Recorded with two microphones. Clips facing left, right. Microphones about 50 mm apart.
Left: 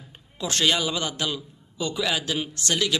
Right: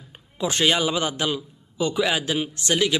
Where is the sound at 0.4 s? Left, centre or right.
Centre.